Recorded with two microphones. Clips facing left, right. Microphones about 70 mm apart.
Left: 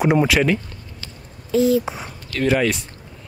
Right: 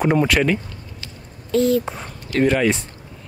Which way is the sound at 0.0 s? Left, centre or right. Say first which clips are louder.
Left 1 dB; centre.